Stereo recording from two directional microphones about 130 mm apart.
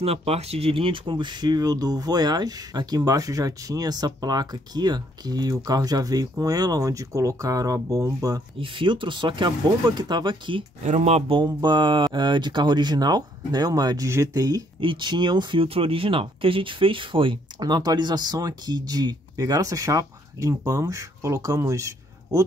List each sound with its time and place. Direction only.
0.0 s speech: 50° right (ahead or behind); by 8.4 s 25° right (ahead or behind)
8.5 s speech: 40° right (ahead or behind)
10.8 s speech: 55° right (ahead or behind)
11.4 s speech: 35° right (ahead or behind)
14.8 s speech: 40° right (ahead or behind); by 22.4 s 25° right (ahead or behind)